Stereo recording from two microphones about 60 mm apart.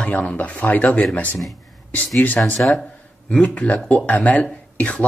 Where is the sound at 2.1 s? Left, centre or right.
Left.